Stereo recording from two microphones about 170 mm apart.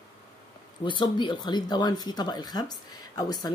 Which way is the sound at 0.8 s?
25° left (ahead or behind).